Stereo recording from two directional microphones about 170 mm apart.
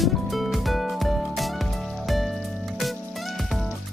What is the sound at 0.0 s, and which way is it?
Music, centre (ahead or behind).